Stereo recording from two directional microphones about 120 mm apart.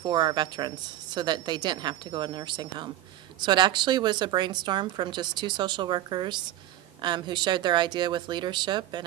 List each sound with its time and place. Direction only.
0.0 s a woman's voice: 40° right (ahead or behind)